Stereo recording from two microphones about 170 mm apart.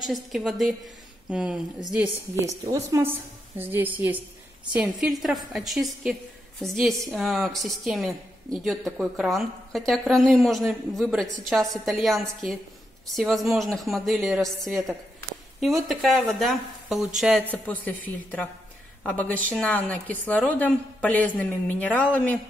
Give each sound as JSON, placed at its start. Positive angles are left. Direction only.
{"t": 0.0, "sound": "a woman's voice", "side_deg": 0}
{"t": 17.5, "sound": "a woman's voice", "side_deg": 10}